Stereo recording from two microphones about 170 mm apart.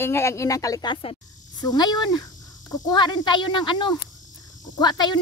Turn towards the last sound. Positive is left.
turn(degrees=25)  # may be behind; listen again after turning